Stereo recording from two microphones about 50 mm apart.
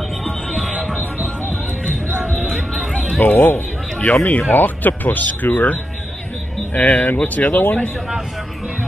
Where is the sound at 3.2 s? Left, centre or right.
Left.